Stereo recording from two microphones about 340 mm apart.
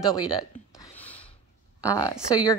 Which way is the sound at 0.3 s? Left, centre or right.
Centre.